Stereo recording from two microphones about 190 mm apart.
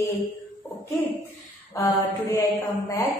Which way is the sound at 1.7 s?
15° left (ahead or behind).